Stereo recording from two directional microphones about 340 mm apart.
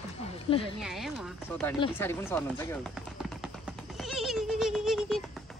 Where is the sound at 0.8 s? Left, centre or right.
Centre.